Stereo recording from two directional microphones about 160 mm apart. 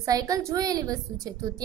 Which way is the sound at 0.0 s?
20° right (ahead or behind).